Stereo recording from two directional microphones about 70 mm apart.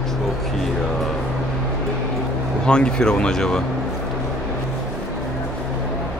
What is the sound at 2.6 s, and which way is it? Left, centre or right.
Speech, centre.